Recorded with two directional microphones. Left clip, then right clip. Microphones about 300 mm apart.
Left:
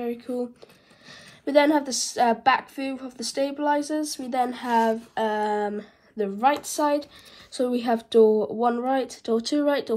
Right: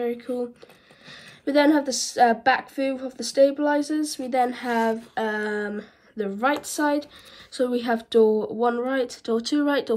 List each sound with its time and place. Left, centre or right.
1.4 s a woman's voice: centre
7.5 s a woman's voice: centre
8.2 s speech: centre
8.5 s a woman's voice: centre